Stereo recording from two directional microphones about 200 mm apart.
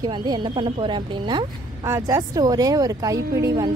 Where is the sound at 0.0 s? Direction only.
20° right (ahead or behind).